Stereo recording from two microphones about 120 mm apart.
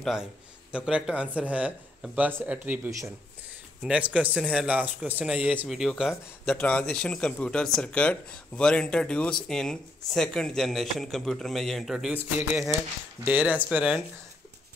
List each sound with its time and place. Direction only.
0.0 s speech: 5° right (ahead or behind)
5.7 s speech: centre (ahead or behind)
12.2 s speech: 15° right (ahead or behind)